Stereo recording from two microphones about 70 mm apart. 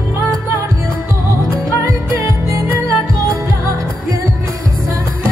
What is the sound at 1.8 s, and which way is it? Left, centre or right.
Music, right.